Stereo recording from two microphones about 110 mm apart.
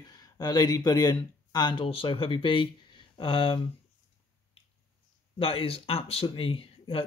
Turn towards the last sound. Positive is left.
turn(degrees=55)  # may be behind; listen again after turning